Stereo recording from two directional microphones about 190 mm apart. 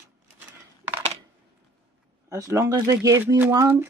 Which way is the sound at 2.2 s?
15° right (ahead or behind).